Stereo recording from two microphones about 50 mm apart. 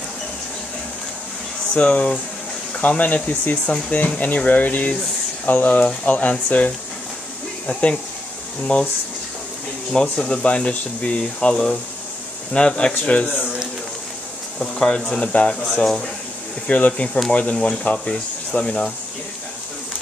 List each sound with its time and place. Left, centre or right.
1.7 s speech: left
7.6 s speech: centre
9.9 s speech: centre
14.6 s speech: centre
16.6 s speech: left
17.9 s speech: centre